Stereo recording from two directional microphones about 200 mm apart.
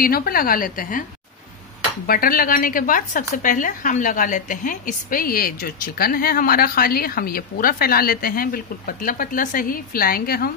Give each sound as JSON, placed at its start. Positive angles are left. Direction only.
{"t": 0.0, "sound": "speech", "side_deg": 45}
{"t": 2.0, "sound": "speech", "side_deg": 45}